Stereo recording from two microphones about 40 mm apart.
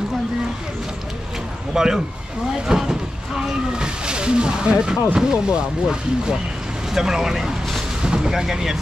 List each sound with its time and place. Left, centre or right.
1.7 s speech: centre